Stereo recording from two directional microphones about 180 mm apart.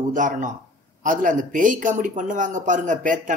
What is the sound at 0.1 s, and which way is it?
Speech, 45° right (ahead or behind).